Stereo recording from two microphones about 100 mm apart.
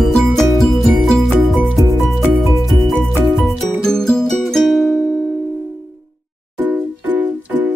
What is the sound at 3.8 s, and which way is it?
Music, 5° left (ahead or behind).